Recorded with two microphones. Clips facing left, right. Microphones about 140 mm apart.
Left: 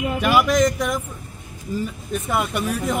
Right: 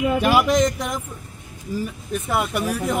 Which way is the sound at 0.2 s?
30° right (ahead or behind).